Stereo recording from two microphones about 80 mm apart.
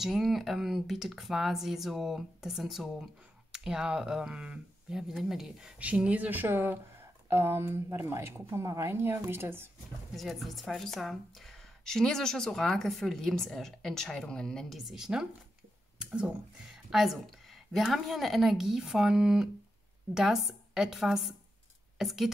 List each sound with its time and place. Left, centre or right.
0.0 s a woman's voice: centre; by 9.7 s right
10.1 s a woman's voice: centre
14.8 s a woman's voice: centre